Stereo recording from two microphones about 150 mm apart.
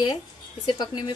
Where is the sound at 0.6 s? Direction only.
30° left (ahead or behind).